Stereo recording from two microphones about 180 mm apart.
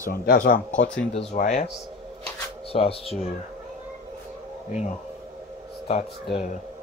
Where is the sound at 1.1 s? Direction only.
35° left (ahead or behind).